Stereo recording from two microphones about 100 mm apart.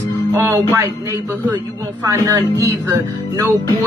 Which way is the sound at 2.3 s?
35° right (ahead or behind).